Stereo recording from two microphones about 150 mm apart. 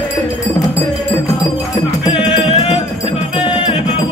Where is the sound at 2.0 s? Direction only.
35° left (ahead or behind).